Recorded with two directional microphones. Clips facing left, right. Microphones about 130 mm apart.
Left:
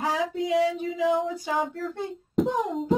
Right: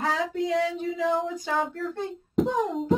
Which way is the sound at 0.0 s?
10° left (ahead or behind).